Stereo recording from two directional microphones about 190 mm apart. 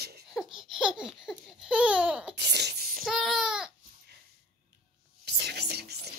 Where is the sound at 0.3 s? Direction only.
Centre (ahead or behind).